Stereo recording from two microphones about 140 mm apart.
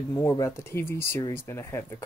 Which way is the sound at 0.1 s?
20° left (ahead or behind).